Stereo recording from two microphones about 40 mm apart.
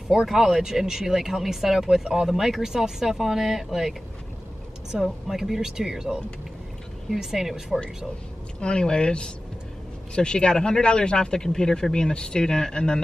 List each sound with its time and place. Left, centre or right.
0.1 s speech: centre
5.0 s speech: centre
7.2 s speech: centre
8.5 s speech: left